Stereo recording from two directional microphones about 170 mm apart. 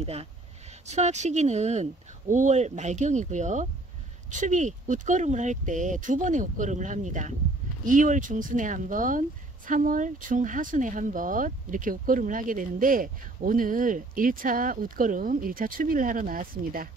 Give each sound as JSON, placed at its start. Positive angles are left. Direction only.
{"t": 0.0, "sound": "speech", "side_deg": -35}